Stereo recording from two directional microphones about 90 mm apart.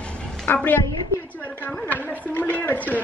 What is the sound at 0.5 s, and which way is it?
Speech, 15° left (ahead or behind).